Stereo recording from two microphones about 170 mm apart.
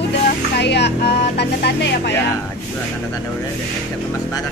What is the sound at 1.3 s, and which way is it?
Music, 75° left (ahead or behind).